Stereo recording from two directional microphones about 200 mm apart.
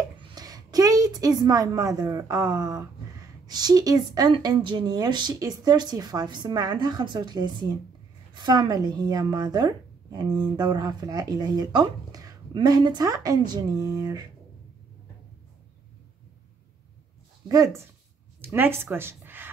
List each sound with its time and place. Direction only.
0.2 s a woman's voice: 20° right (ahead or behind)
17.5 s speech: 15° right (ahead or behind)
18.4 s a sound: 10° right (ahead or behind)